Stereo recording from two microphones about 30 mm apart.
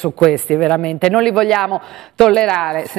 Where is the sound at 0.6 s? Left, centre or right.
Left.